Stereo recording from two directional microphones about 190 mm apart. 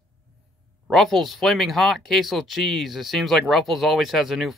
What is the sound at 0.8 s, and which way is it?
Speech, centre (ahead or behind).